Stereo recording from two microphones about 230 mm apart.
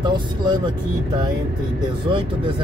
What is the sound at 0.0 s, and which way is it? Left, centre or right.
Speech, centre.